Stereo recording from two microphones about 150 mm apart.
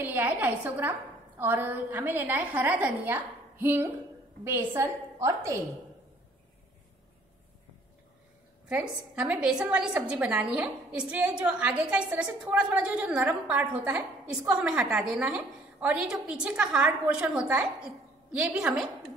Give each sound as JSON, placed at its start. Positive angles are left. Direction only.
{"t": 0.0, "sound": "a woman's voice", "side_deg": -10}
{"t": 8.6, "sound": "a woman's voice", "side_deg": -5}